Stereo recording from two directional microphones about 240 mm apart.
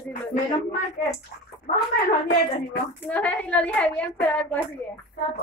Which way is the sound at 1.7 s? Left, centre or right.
Left.